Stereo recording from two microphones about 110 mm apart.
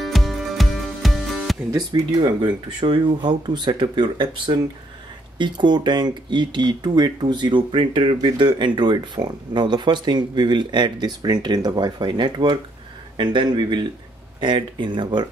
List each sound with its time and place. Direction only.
0.0 s music: centre (ahead or behind)
1.7 s speech: 40° right (ahead or behind); by 8.2 s 55° right (ahead or behind)
8.2 s speech: 45° right (ahead or behind)